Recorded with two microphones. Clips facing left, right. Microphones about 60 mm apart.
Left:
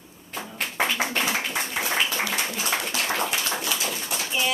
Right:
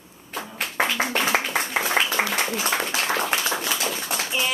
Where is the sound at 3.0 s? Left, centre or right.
Centre.